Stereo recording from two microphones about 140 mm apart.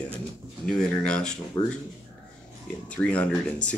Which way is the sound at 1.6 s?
20° left (ahead or behind).